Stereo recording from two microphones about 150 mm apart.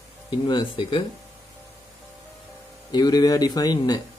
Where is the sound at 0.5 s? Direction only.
30° left (ahead or behind).